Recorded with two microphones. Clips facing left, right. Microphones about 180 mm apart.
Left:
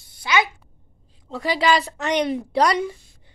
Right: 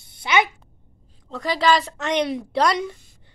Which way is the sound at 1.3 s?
5° left (ahead or behind).